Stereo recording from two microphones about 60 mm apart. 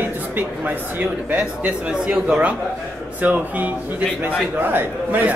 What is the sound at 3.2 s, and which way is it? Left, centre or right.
Speech, right.